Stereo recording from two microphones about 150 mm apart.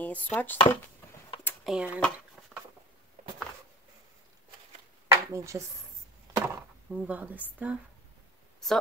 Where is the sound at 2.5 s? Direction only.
5° left (ahead or behind).